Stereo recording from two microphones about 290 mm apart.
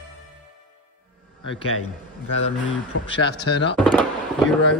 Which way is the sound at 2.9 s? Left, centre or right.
Left.